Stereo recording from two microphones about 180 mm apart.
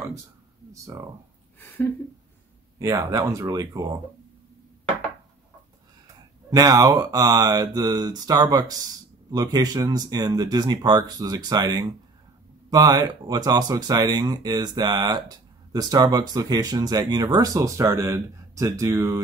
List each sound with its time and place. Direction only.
0.8 s speech: 15° right (ahead or behind)
2.8 s speech: 15° right (ahead or behind)
6.5 s speech: 20° right (ahead or behind)